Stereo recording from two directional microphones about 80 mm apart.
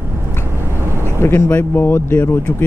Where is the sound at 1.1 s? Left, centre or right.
Left.